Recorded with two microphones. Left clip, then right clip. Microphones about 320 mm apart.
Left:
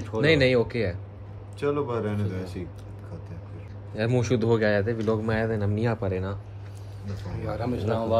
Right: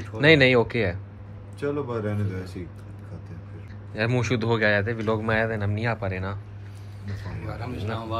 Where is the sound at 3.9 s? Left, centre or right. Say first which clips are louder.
Even; centre.